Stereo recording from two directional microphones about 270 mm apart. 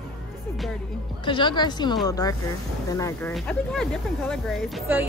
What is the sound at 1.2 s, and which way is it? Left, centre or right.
A woman's voice, centre.